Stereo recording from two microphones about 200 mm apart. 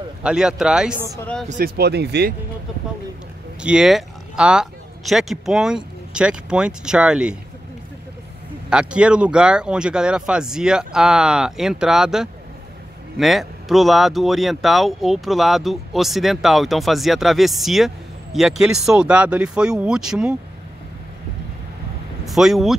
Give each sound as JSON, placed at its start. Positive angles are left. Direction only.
{"t": 0.2, "sound": "speech", "side_deg": -5}
{"t": 1.5, "sound": "speech", "side_deg": -50}
{"t": 3.6, "sound": "speech", "side_deg": -5}
{"t": 8.6, "sound": "speech", "side_deg": -5}
{"t": 22.2, "sound": "speech", "side_deg": 0}